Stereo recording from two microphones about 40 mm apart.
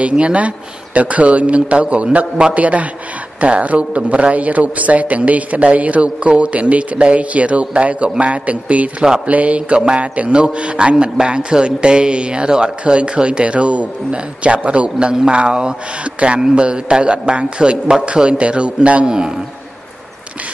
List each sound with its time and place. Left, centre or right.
0.0 s a man's voice: right